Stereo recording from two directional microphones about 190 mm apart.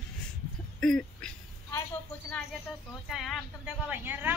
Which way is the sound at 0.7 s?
5° left (ahead or behind).